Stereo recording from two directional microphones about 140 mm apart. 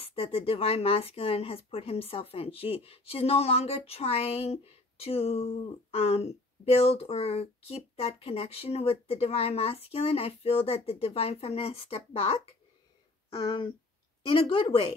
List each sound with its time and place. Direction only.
0.0 s a woman's voice: 45° left (ahead or behind)